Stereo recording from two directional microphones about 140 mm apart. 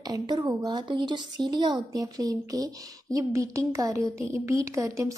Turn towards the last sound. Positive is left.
turn(degrees=-20)  # may be behind; listen again after turning